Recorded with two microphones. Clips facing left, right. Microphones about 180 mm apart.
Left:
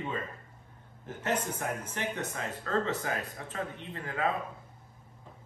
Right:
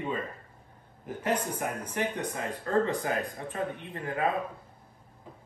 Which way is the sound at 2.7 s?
20° right (ahead or behind).